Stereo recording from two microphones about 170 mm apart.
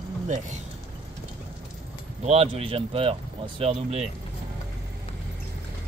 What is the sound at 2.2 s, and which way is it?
Speech, 35° right (ahead or behind).